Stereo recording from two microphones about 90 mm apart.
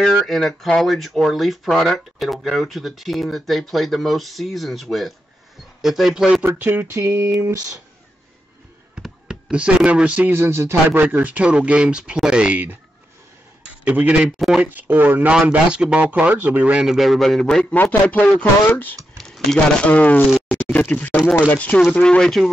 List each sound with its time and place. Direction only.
0.0 s speech: 5° left (ahead or behind)
6.4 s speech: 25° right (ahead or behind)
9.0 s speech: 10° right (ahead or behind)
10.3 s speech: 30° right (ahead or behind)
13.8 s speech: 15° right (ahead or behind)
16.8 s speech: centre (ahead or behind); by 18.9 s 20° left (ahead or behind)
19.1 s a sound: 5° left (ahead or behind)
19.9 s speech: 20° left (ahead or behind)
20.2 s a sound: 5° right (ahead or behind)
20.5 s a sound: 15° left (ahead or behind)
21.5 s speech: 15° left (ahead or behind)